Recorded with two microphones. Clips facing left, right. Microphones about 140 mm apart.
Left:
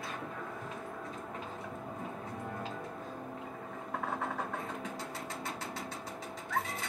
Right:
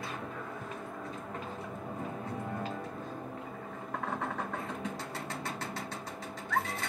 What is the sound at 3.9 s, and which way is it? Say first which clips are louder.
Vehicle: right 1 dB; centre (ahead or behind).